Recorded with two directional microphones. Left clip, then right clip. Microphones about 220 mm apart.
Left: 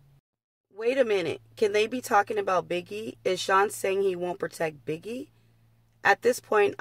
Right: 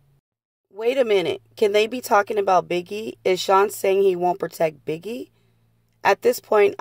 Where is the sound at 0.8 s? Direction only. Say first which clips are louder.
Right 5 dB; 25° right (ahead or behind).